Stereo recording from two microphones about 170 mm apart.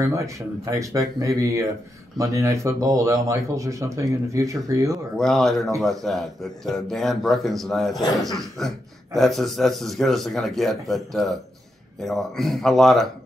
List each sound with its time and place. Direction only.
0.7 s speech: 20° right (ahead or behind)
5.1 s a man's voice: centre (ahead or behind)